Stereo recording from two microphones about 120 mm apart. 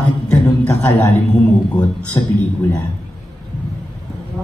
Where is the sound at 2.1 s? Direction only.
30° left (ahead or behind).